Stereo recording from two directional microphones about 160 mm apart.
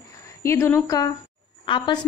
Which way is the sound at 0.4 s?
15° left (ahead or behind).